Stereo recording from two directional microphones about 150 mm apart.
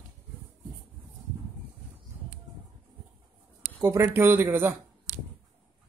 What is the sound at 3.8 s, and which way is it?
Speech, 15° right (ahead or behind).